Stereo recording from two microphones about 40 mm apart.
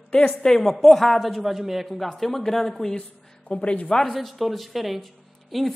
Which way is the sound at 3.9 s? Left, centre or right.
Centre.